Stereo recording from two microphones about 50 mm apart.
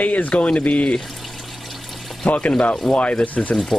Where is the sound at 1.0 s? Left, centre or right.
Centre.